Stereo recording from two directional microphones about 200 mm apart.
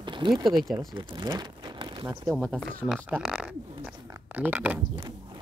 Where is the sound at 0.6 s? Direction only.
Centre (ahead or behind).